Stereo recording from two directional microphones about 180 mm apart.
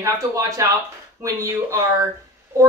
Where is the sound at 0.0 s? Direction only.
15° right (ahead or behind).